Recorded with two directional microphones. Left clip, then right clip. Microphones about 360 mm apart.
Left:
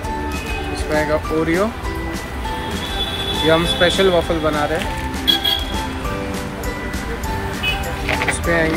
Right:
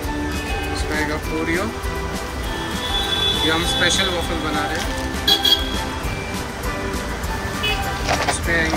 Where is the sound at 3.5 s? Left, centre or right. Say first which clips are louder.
Left 3 dB; centre.